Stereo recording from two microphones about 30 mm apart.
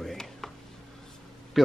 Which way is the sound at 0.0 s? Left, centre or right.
Centre.